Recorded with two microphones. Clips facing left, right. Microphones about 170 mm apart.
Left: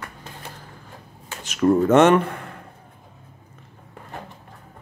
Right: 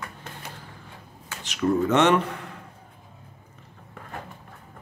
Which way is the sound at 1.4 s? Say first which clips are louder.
Left 5 dB; 45° left (ahead or behind).